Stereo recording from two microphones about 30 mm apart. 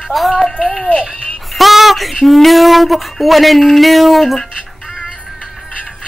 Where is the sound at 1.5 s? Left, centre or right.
Centre.